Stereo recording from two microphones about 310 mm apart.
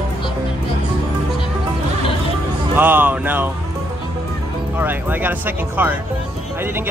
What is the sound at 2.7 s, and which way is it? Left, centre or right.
Speech, centre.